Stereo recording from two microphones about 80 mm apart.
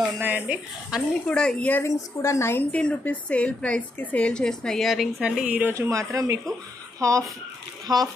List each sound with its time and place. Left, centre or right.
0.5 s a woman's voice: centre
1.2 s a woman's voice: centre
1.7 s speech: left
2.7 s a woman's voice: centre
5.2 s a woman's voice: centre
5.8 s speech: right
7.8 s speech: right